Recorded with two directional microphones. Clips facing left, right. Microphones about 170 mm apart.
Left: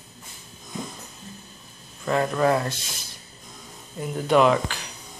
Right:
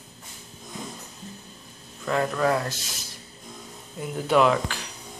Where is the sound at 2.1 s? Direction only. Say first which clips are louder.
Left 2 dB; centre (ahead or behind).